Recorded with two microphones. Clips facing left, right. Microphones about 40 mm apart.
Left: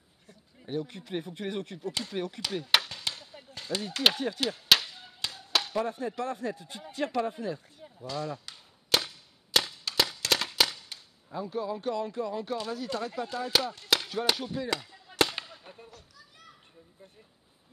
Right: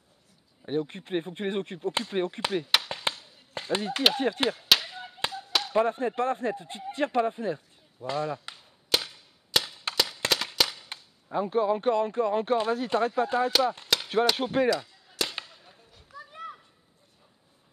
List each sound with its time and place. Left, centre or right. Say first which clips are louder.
0.7 s speech: right 5 dB; right
2.9 s chop: right 5 dB; right
4.2 s speech: right 5 dB; right
4.8 s chop: right 5 dB; right
5.7 s speech: right 6 dB; right
8.9 s cap gun: even; centre
10.3 s a sound: even; centre
10.9 s speech: right 7 dB; right
13.9 s chop: left 6 dB; centre
14.3 s speech: right 9 dB; right
15.2 s firecracker: left 6 dB; left
16.1 s children playing: right 13 dB; right